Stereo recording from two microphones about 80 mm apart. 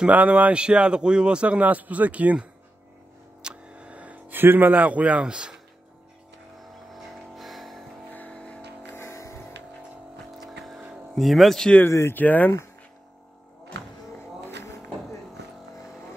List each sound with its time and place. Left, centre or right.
0.0 s a man's voice: centre
3.4 s a sound: centre
6.6 s vehicle: centre
8.1 s vehicle: centre
8.9 s music: left
10.3 s vehicle: centre
11.1 s speech: centre
11.9 s speech: left
12.2 s speech: left
14.4 s vehicle: left